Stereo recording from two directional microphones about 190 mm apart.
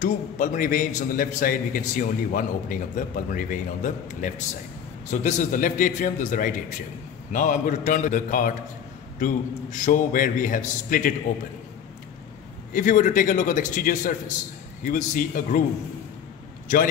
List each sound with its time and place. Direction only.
0.0 s a man's voice: 40° left (ahead or behind)
12.7 s a man's voice: 45° left (ahead or behind)
16.6 s speech: 45° left (ahead or behind)